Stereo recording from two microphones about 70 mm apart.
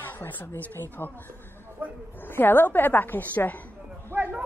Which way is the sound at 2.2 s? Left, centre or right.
Left.